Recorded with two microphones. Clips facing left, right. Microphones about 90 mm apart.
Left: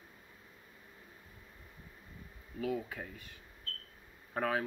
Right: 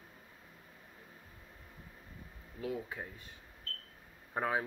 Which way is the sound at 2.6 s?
30° right (ahead or behind).